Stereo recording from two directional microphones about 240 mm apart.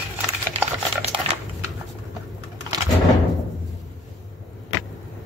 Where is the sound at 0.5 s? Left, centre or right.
Right.